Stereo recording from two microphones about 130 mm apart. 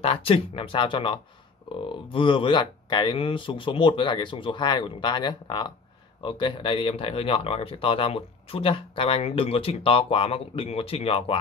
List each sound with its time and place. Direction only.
0.0 s speech: 45° left (ahead or behind)